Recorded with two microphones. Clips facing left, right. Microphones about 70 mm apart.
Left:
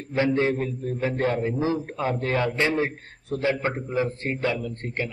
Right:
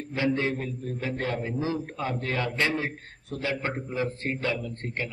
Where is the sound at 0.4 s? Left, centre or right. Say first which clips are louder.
Left 5 dB; left.